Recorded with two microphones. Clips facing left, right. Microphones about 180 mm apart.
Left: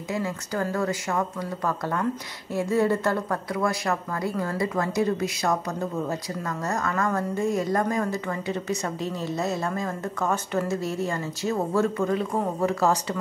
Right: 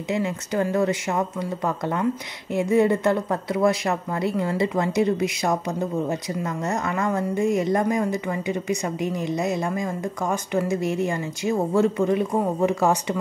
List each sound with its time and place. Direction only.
0.1 s a woman's voice: 20° right (ahead or behind)
2.5 s a woman's voice: 20° right (ahead or behind)